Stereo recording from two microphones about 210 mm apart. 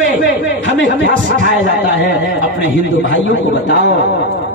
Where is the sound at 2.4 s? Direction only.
40° right (ahead or behind).